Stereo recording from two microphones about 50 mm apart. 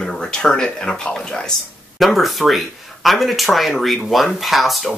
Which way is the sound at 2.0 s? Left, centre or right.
Centre.